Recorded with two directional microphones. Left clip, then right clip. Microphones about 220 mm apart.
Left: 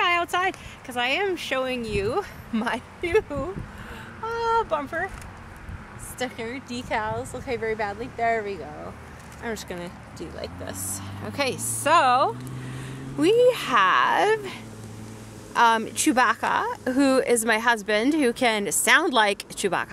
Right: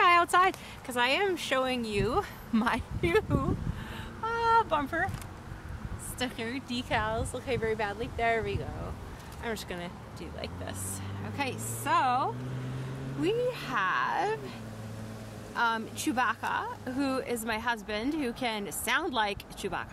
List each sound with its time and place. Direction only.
0.0 s speech: centre (ahead or behind); by 3.3 s 15° left (ahead or behind)
4.2 s a sound: 25° left (ahead or behind)
6.1 s speech: 25° left (ahead or behind)
11.3 s speech: 40° left (ahead or behind)